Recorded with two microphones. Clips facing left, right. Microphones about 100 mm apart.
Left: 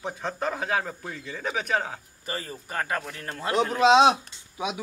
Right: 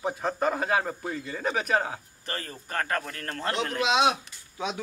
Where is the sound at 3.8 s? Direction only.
30° left (ahead or behind).